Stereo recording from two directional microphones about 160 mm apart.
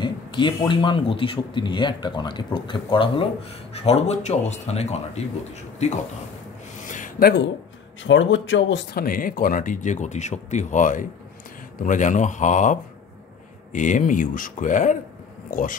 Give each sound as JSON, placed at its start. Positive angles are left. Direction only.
{"t": 0.0, "sound": "speech", "side_deg": 30}
{"t": 6.9, "sound": "a sound", "side_deg": 55}
{"t": 8.7, "sound": "speech", "side_deg": 70}